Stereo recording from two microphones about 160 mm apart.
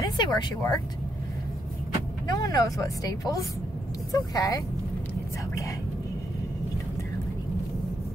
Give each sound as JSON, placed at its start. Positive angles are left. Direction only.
{"t": 0.0, "sound": "speech", "side_deg": 25}
{"t": 2.2, "sound": "speech", "side_deg": 20}